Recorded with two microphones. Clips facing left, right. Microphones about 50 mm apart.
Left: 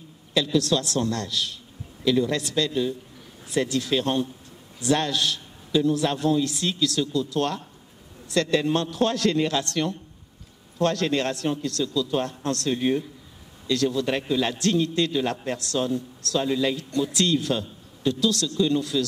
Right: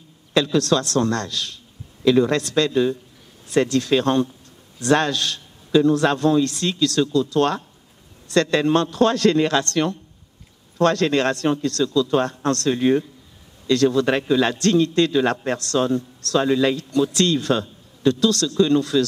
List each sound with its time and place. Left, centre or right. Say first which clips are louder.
0.3 s a man's voice: right 4 dB; right
13.7 s a man's voice: right 6 dB; right